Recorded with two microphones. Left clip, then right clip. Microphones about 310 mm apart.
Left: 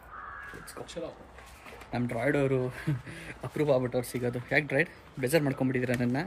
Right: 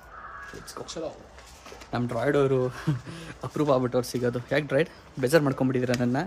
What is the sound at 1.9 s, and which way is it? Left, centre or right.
Speech, centre.